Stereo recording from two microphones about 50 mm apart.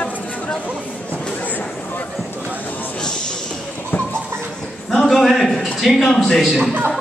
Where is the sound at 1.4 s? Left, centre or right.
Left.